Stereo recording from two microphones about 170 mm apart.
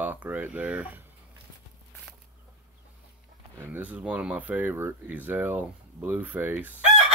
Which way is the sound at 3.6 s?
10° right (ahead or behind).